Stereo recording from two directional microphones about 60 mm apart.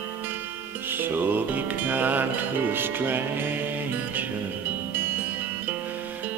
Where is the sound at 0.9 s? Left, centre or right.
Right.